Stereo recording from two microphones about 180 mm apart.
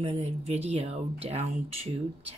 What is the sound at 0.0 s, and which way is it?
Speech, 35° right (ahead or behind).